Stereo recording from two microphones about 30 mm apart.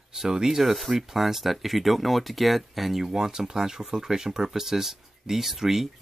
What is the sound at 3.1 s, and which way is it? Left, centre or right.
Speech, right.